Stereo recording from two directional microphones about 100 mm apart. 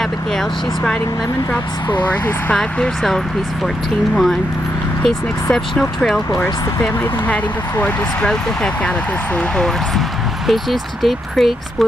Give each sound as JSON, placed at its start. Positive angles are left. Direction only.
{"t": 2.0, "sound": "speech", "side_deg": 15}
{"t": 6.4, "sound": "speech", "side_deg": 20}
{"t": 7.8, "sound": "speech", "side_deg": 10}
{"t": 9.6, "sound": "speech", "side_deg": 0}